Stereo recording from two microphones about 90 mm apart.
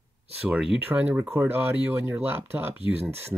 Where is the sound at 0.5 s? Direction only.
10° right (ahead or behind).